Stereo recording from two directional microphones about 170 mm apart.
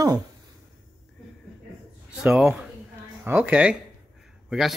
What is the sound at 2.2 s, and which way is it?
Speech, 5° right (ahead or behind).